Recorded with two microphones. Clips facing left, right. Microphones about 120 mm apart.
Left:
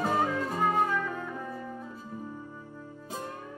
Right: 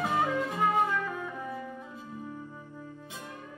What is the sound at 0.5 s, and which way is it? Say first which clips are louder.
Music: left 1 dB; 10° right (ahead or behind).